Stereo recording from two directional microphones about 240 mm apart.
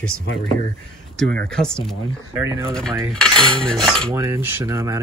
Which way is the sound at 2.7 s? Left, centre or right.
Centre.